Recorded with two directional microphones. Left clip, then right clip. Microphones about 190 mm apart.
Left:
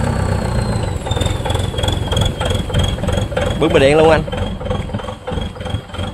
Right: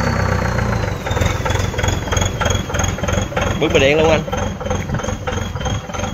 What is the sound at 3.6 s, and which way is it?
Speech, 30° left (ahead or behind).